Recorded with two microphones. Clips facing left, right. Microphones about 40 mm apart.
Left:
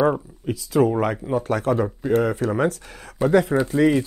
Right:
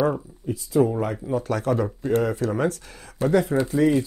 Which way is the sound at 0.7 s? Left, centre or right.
Left.